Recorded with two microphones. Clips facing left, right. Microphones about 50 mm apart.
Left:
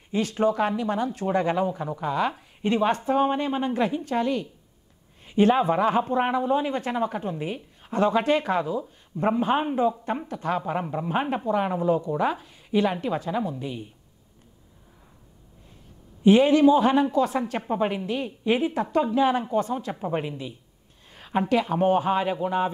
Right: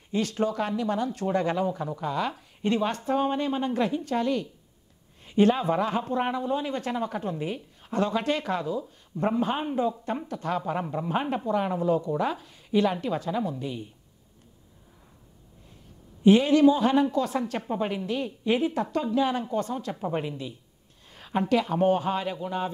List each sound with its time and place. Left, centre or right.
0.1 s speech: centre
16.3 s speech: centre